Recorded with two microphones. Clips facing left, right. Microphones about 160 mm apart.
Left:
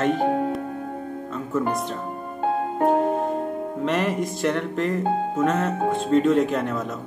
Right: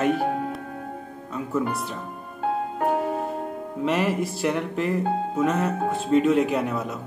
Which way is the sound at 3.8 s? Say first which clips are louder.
Right 1 dB; 5° right (ahead or behind).